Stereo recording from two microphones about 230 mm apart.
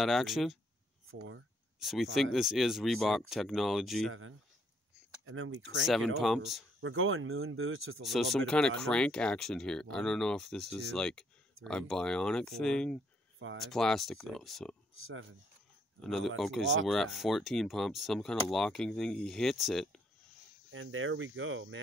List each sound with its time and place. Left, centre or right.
0.0 s speech: centre
1.8 s speech: centre
5.2 s speech: right
5.9 s speech: centre
6.8 s speech: right
8.0 s speech: centre
16.0 s speech: centre
20.7 s speech: right